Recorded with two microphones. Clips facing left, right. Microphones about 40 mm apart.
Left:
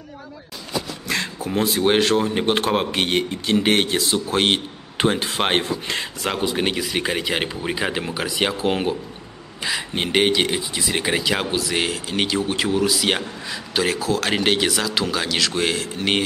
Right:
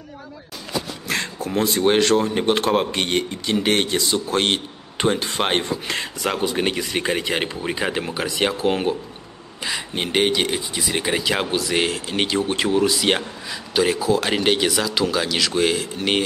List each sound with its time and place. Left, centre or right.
1.1 s speech: centre
3.7 s speech: centre
4.0 s a man's voice: centre
14.3 s a man's voice: centre